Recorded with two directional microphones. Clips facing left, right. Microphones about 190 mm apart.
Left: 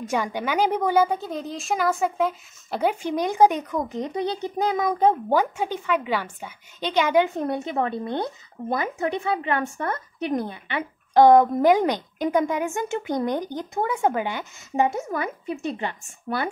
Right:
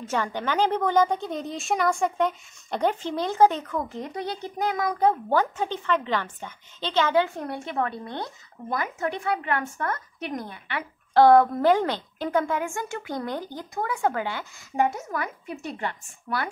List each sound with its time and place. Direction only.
0.0 s a woman's voice: 10° left (ahead or behind)